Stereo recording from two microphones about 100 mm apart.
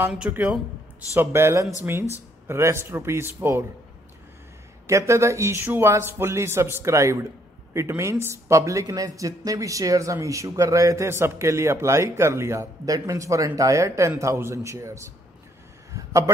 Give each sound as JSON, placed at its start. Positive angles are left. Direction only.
{"t": 0.3, "sound": "speech", "side_deg": -10}
{"t": 1.1, "sound": "speech", "side_deg": -25}
{"t": 4.8, "sound": "speech", "side_deg": -30}
{"t": 15.9, "sound": "a sound", "side_deg": -30}